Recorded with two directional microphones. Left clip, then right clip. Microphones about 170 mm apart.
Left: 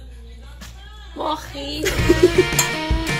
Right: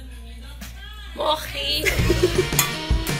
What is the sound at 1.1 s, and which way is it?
Music, 40° left (ahead or behind).